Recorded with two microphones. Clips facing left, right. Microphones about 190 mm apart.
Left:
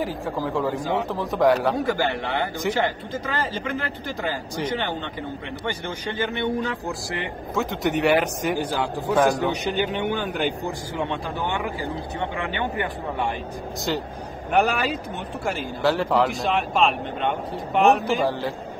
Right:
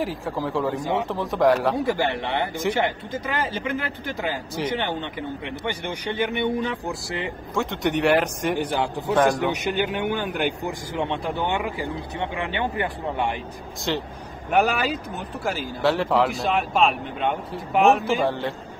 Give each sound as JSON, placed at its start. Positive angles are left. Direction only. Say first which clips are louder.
{"t": 0.0, "sound": "speech", "louder": "even", "side_deg": 0}
{"t": 1.9, "sound": "speech", "louder": "even", "side_deg": -25}
{"t": 2.6, "sound": "speech", "louder": "right 1 dB", "side_deg": 0}
{"t": 3.1, "sound": "speech", "louder": "even", "side_deg": -10}
{"t": 5.9, "sound": "speech", "louder": "right 3 dB", "side_deg": -15}
{"t": 7.5, "sound": "speech", "louder": "even", "side_deg": 0}
{"t": 9.4, "sound": "speech", "louder": "even", "side_deg": -10}
{"t": 13.9, "sound": "speech", "louder": "right 1 dB", "side_deg": 5}